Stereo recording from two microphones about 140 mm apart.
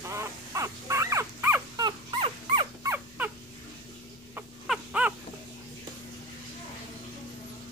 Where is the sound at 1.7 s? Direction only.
30° right (ahead or behind).